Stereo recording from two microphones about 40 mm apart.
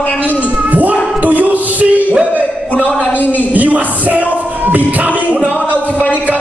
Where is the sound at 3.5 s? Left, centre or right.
Right.